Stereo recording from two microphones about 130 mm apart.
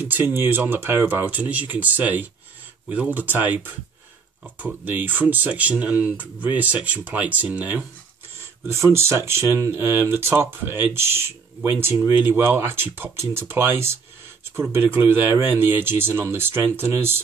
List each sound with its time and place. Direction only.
0.0 s speech: 15° right (ahead or behind)